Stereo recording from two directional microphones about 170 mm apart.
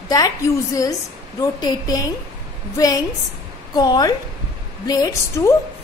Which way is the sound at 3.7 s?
25° left (ahead or behind).